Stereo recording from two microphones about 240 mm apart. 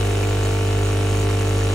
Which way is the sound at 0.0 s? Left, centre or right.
Centre.